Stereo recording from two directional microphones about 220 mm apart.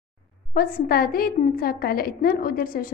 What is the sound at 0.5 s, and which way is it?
A woman's voice, 40° left (ahead or behind).